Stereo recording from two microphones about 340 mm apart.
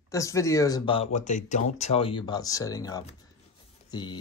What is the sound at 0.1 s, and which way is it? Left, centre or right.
Speech, centre.